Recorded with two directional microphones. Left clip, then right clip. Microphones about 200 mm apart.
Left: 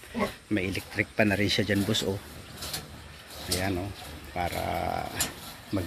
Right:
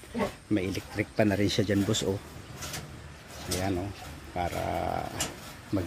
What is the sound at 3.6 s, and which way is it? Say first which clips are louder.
Speech: right 2 dB; 10° right (ahead or behind).